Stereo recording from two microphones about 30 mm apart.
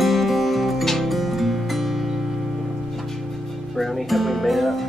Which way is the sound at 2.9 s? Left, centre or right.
Centre.